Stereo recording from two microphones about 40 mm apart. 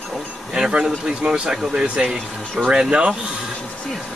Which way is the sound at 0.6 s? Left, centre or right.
Right.